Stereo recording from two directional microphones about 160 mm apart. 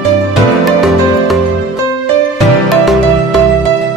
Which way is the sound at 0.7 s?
Centre (ahead or behind).